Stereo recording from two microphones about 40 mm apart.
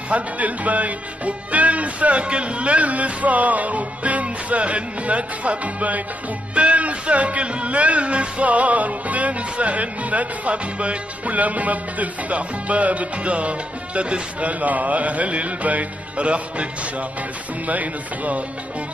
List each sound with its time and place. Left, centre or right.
0.1 s speech: right
17.6 s speech: right